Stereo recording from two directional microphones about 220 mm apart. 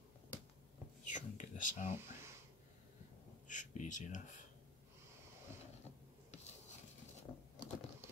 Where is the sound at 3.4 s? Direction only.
35° left (ahead or behind).